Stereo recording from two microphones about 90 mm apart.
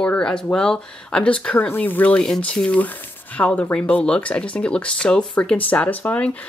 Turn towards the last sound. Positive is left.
turn(degrees=15)  # may be behind; listen again after turning